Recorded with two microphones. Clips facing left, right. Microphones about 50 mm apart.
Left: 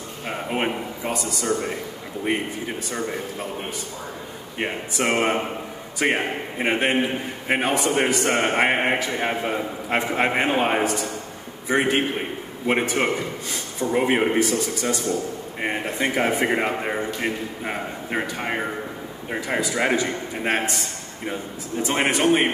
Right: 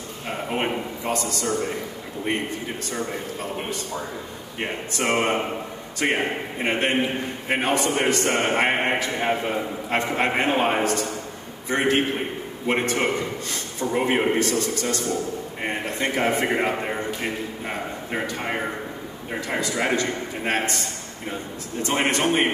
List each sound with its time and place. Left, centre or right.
0.3 s a man's voice: centre
4.6 s a man's voice: centre
21.8 s a man's voice: centre